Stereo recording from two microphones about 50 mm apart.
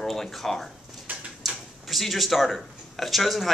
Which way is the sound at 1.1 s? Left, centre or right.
Right.